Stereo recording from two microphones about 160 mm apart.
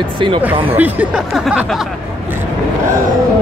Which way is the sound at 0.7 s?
5° right (ahead or behind).